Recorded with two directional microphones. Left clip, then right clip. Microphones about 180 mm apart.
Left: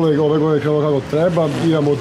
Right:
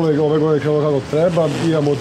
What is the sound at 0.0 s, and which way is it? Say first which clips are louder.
Speech: even; 5° left (ahead or behind).